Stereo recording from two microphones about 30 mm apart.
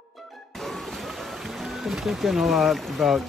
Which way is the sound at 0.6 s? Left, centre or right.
Centre.